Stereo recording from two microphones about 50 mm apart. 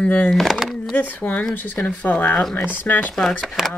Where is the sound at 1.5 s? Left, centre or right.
Left.